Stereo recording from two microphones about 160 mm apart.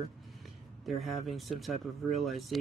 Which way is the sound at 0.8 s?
Centre (ahead or behind).